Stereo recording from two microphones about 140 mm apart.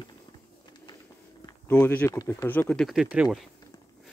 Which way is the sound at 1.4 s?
25° left (ahead or behind).